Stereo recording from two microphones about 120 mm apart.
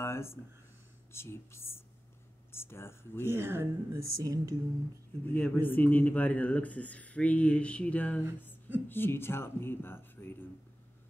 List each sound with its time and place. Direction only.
0.0 s a sound: 20° left (ahead or behind)
1.1 s speech: 20° left (ahead or behind)
3.3 s a woman's voice: 20° right (ahead or behind)
5.2 s speech: 15° left (ahead or behind)